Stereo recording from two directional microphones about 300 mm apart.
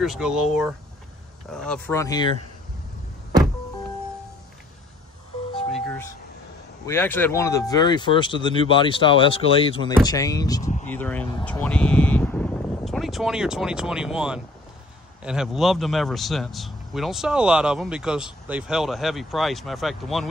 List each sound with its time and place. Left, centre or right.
0.0 s a man's voice: centre
1.5 s speech: centre
5.5 s ice cream truck: centre
6.9 s a man's voice: centre